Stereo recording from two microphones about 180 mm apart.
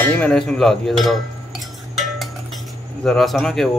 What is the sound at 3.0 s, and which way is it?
Speech, centre (ahead or behind).